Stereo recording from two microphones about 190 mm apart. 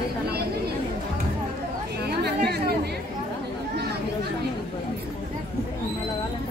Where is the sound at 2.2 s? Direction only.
55° right (ahead or behind).